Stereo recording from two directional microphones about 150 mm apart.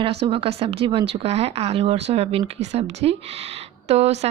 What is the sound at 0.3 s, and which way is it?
Speech, 40° right (ahead or behind).